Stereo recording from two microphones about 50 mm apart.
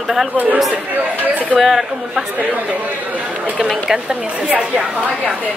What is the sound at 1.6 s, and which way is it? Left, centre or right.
Speech, centre.